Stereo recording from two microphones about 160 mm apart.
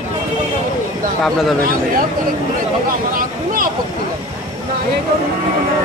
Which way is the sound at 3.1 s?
60° right (ahead or behind).